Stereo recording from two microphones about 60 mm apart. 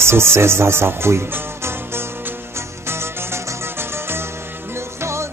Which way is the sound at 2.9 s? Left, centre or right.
Right.